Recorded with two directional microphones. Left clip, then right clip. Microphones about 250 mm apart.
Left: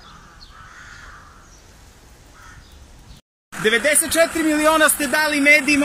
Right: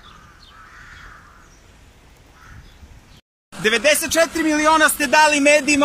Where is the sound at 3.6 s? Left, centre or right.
Centre.